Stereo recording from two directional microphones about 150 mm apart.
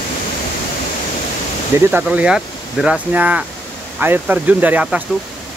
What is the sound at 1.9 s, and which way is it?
Speech, 10° right (ahead or behind).